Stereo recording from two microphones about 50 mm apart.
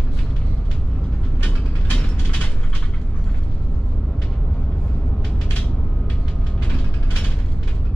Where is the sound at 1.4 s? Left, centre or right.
Left.